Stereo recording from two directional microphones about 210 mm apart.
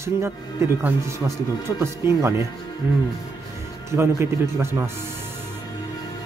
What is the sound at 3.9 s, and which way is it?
Speech, 10° right (ahead or behind).